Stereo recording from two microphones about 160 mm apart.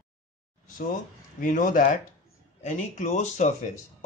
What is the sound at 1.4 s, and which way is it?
Speech, 55° left (ahead or behind).